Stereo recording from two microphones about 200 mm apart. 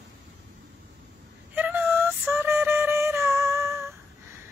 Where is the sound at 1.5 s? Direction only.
10° right (ahead or behind).